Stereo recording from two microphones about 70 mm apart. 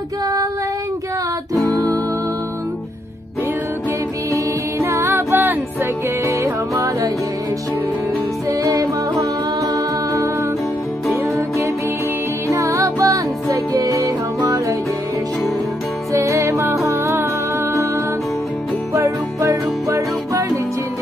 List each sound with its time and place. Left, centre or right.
4.3 s music: right
6.2 s music: right
8.5 s music: right
11.3 s music: right
16.1 s music: right
18.9 s music: right